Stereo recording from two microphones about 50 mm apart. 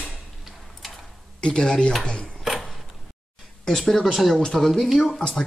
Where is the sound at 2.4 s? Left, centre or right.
Centre.